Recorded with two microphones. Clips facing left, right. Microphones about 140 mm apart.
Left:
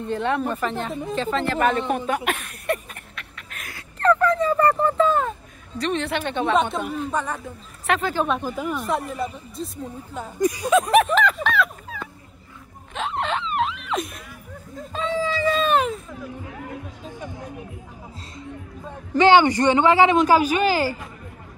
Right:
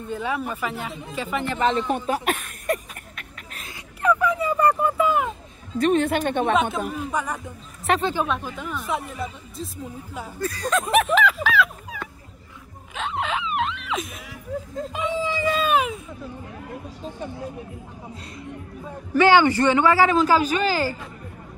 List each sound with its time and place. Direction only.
0.0 s speech: 5° right (ahead or behind)
2.0 s a sound: 35° right (ahead or behind)
3.6 s a sound: 15° right (ahead or behind)
5.8 s a woman's voice: 45° right (ahead or behind)
6.5 s speech: centre (ahead or behind)
7.8 s speech: 35° right (ahead or behind)
8.3 s speech: 5° left (ahead or behind)
10.4 s a man's voice: 15° left (ahead or behind)
10.8 s speech: centre (ahead or behind)
12.9 s music: centre (ahead or behind)
14.9 s a sound: 15° right (ahead or behind)
19.1 s a man's voice: 20° left (ahead or behind)